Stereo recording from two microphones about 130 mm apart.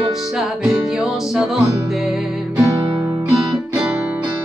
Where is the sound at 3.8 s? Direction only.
10° right (ahead or behind).